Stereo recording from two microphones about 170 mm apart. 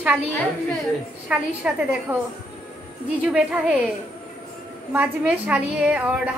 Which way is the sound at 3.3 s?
5° right (ahead or behind).